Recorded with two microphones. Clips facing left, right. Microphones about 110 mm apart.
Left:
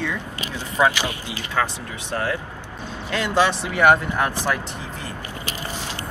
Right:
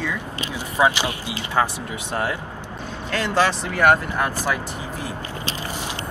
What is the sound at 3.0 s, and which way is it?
Speech, 15° left (ahead or behind).